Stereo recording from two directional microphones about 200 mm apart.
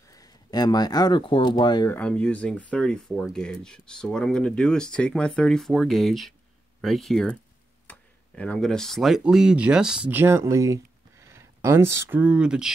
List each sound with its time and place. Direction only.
0.1 s speech: 20° left (ahead or behind)
2.0 s speech: 5° left (ahead or behind)